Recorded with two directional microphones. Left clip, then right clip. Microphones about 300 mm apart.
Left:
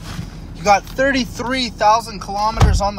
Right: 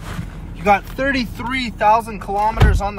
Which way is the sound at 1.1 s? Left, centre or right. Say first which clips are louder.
Left 1 dB; left.